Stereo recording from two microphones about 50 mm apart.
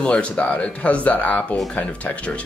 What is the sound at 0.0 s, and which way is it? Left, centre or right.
Speech, left.